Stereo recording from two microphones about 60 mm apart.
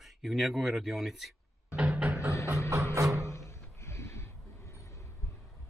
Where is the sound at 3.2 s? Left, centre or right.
Left.